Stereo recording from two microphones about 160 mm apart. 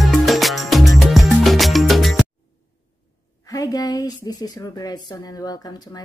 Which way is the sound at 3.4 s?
25° left (ahead or behind).